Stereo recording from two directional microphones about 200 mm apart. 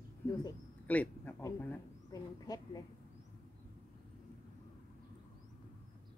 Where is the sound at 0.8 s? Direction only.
10° left (ahead or behind).